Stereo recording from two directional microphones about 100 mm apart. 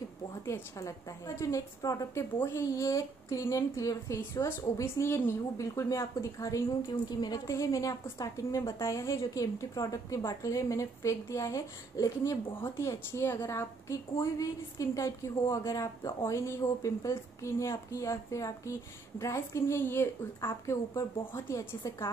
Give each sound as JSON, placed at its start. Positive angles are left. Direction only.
{"t": 0.5, "sound": "a woman's voice", "side_deg": 30}
{"t": 6.9, "sound": "a woman's voice", "side_deg": 45}